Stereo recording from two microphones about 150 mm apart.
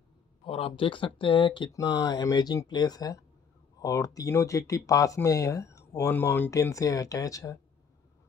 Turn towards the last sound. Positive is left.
turn(degrees=20)  # may be behind; listen again after turning